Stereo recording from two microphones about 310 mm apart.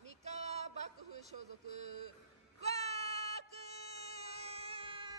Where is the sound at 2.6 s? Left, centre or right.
Right.